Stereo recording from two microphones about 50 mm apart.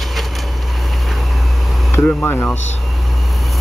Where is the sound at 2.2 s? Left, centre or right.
Left.